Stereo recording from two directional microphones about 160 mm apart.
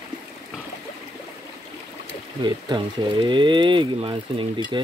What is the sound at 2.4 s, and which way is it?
Speech, 30° right (ahead or behind).